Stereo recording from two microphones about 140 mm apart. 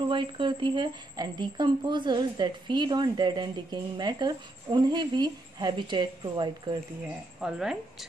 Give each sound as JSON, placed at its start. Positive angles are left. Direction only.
{"t": 0.1, "sound": "a woman's voice", "side_deg": -35}
{"t": 7.3, "sound": "a woman's voice", "side_deg": -5}